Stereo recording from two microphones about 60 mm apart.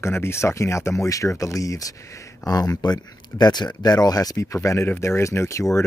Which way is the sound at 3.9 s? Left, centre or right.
Left.